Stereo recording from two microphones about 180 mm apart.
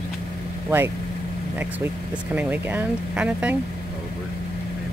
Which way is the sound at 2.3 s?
10° right (ahead or behind).